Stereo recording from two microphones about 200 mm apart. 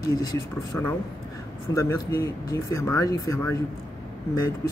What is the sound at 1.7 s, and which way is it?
Speech, 15° left (ahead or behind).